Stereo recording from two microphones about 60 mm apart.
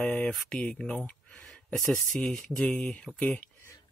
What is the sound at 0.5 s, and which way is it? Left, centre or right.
Speech, left.